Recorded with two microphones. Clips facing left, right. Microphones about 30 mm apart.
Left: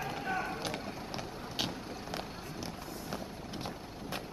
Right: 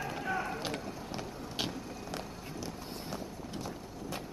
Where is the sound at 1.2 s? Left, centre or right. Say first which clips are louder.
Even; centre.